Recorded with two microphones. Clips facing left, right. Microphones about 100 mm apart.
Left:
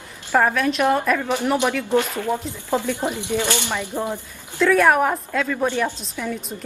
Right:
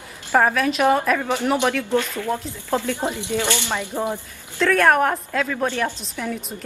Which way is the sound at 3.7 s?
15° right (ahead or behind).